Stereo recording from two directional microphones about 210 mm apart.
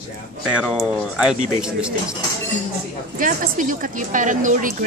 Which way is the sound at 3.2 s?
40° right (ahead or behind).